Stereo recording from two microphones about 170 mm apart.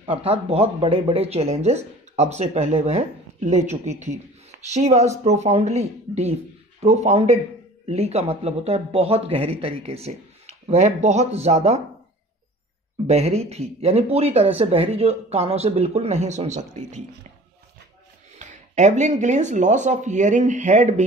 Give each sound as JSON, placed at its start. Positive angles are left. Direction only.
{"t": 0.0, "sound": "speech", "side_deg": -30}
{"t": 13.0, "sound": "speech", "side_deg": -40}
{"t": 18.3, "sound": "speech", "side_deg": -45}